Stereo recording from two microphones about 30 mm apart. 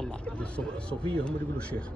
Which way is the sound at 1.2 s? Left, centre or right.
Left.